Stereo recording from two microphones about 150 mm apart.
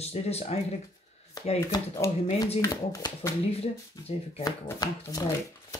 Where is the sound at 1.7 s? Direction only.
20° left (ahead or behind).